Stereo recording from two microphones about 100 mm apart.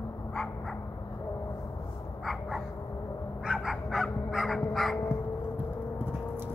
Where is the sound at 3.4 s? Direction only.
5° right (ahead or behind).